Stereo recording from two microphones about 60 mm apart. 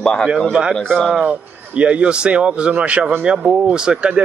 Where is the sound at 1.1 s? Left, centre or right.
Centre.